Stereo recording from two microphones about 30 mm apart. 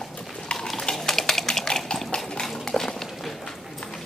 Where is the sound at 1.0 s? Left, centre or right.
Centre.